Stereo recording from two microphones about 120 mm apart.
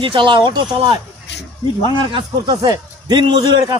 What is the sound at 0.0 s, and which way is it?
Speech, 45° right (ahead or behind).